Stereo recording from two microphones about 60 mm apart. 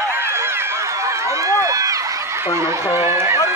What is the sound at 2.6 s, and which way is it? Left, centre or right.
Speech, right.